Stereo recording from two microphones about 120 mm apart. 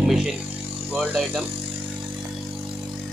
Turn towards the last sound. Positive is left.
turn(degrees=0)  # may be behind; listen again after turning